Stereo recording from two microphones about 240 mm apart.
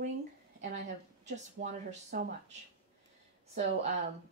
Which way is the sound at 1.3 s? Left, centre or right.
Right.